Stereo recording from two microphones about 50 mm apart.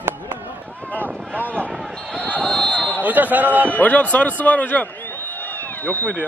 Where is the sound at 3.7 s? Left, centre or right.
Left.